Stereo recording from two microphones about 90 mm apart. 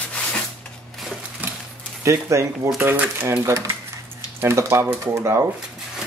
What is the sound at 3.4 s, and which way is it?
Speech, 35° right (ahead or behind).